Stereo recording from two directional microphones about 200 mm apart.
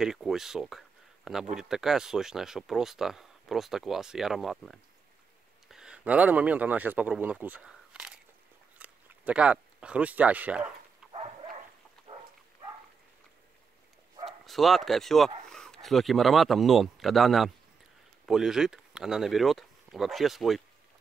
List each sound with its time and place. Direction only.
0.0 s speech: centre (ahead or behind)
11.0 s dog: 5° right (ahead or behind)
12.1 s pig: 25° right (ahead or behind)
14.4 s speech: centre (ahead or behind)